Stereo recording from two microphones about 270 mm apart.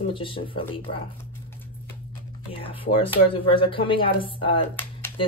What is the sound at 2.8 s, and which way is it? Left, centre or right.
Speech, centre.